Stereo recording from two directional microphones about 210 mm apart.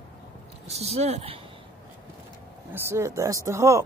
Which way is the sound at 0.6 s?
30° right (ahead or behind).